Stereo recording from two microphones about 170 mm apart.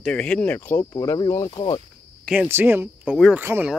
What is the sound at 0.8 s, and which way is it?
Speech, 25° left (ahead or behind).